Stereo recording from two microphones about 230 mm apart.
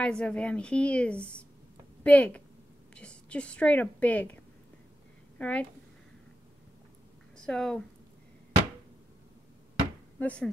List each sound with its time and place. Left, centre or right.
0.0 s a woman's voice: centre
5.4 s a woman's voice: centre
7.3 s speech: centre
10.1 s speech: centre